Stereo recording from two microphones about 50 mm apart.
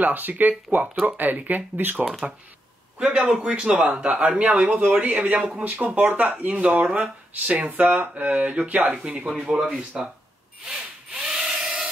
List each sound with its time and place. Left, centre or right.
0.0 s speech: right
3.3 s speech: centre; by 8.9 s right
9.2 s speech: centre
10.7 s wood: centre
11.2 s a sound: centre